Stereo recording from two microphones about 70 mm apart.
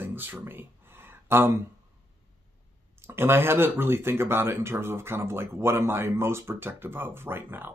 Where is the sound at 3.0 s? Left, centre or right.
Right.